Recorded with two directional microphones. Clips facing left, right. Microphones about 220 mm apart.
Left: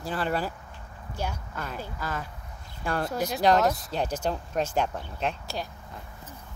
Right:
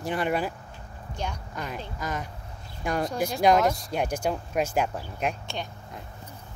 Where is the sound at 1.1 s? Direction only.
5° left (ahead or behind).